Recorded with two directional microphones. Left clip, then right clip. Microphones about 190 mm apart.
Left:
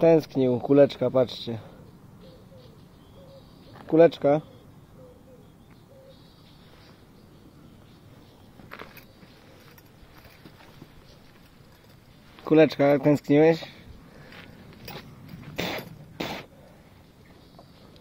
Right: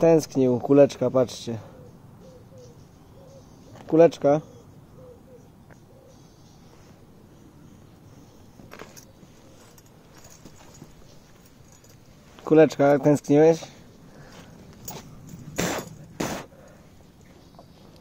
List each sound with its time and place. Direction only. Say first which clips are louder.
0.0 s speech: right 1 dB; 5° right (ahead or behind)
3.7 s speech: right 1 dB; centre (ahead or behind)
12.4 s speech: right 2 dB; 5° right (ahead or behind)
15.5 s a sound: right 3 dB; 35° right (ahead or behind)